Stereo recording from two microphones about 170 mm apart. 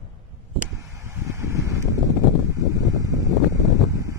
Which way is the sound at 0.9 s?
15° right (ahead or behind).